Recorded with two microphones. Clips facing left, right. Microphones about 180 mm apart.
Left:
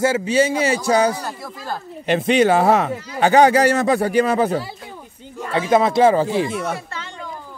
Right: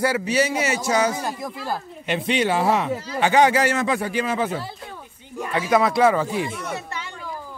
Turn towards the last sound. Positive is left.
turn(degrees=-15)  # may be behind; listen again after turning